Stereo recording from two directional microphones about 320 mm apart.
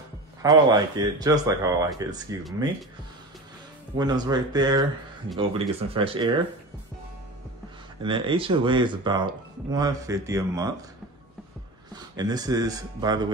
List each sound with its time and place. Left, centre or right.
0.4 s speech: centre
3.9 s speech: centre
8.0 s speech: centre
11.9 s speech: centre